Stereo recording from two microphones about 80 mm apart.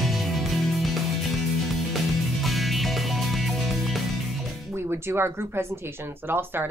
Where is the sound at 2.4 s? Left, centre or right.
Centre.